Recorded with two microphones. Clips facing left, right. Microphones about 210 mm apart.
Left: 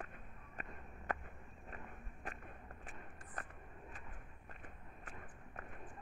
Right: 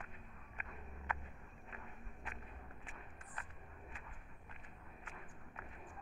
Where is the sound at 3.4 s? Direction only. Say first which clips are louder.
Left 4 dB; 45° left (ahead or behind).